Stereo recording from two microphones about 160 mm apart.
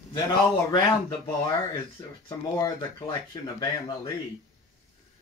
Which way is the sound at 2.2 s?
25° left (ahead or behind).